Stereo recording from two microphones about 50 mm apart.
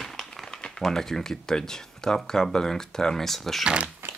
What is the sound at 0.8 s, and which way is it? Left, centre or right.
Speech, centre.